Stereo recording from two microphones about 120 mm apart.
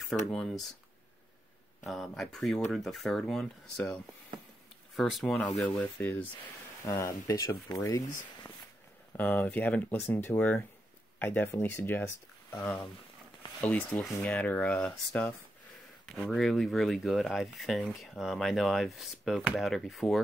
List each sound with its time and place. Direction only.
0.3 s speech: 5° left (ahead or behind)
1.9 s speech: centre (ahead or behind)
6.9 s speech: 25° left (ahead or behind)
9.1 s speech: 15° left (ahead or behind)
12.4 s a sound: 15° left (ahead or behind)
13.6 s speech: 10° left (ahead or behind)